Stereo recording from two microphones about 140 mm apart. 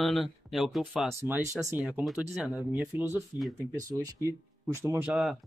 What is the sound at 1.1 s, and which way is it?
Speech, 15° right (ahead or behind).